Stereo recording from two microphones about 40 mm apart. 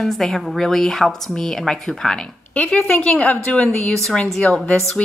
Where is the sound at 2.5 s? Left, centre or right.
Left.